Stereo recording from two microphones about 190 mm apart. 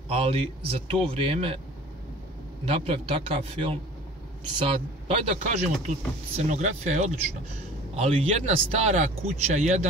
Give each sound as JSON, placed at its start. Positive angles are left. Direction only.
{"t": 0.1, "sound": "speech", "side_deg": -30}
{"t": 2.6, "sound": "a man's voice", "side_deg": -30}